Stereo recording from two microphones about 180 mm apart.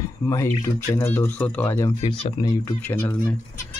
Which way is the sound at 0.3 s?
15° left (ahead or behind).